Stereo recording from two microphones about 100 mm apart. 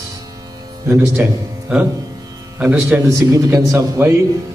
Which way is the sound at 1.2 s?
25° right (ahead or behind).